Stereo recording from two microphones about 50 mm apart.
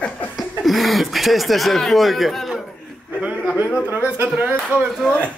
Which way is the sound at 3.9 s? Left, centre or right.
Right.